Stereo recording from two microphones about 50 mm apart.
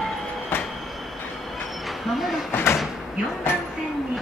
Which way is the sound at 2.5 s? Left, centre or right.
Left.